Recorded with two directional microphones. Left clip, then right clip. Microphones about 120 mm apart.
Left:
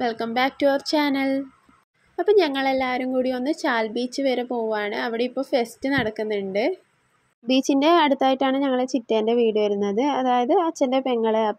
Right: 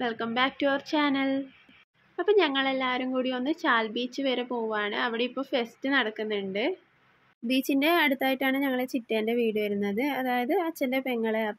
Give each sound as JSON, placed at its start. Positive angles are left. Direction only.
{"t": 0.0, "sound": "speech", "side_deg": 40}